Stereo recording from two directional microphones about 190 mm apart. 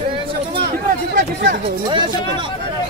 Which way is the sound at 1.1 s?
50° right (ahead or behind).